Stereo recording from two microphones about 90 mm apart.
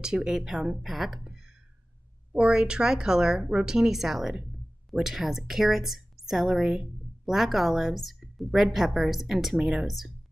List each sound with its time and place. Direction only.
0.0 s a woman's voice: 5° right (ahead or behind)